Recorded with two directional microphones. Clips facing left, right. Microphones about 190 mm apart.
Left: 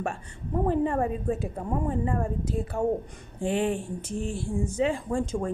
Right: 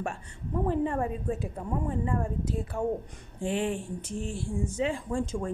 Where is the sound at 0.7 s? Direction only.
50° left (ahead or behind).